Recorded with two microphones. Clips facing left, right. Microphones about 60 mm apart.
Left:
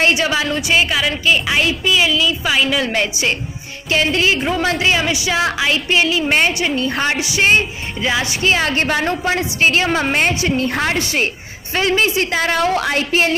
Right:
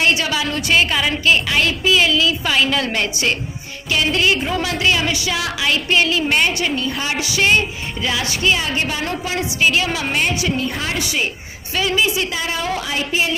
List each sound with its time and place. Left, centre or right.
0.0 s a woman's voice: left
0.6 s a woman's voice: centre
3.9 s speech: left
6.8 s a woman's voice: left
7.2 s speech: left
8.5 s a woman's voice: left
10.7 s a woman's voice: left
11.0 s a woman's voice: left